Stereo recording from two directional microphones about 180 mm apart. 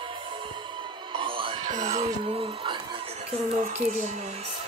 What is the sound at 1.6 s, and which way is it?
Speech, 40° right (ahead or behind).